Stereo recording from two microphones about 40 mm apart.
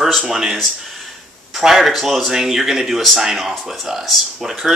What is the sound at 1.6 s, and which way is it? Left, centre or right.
Speech, centre.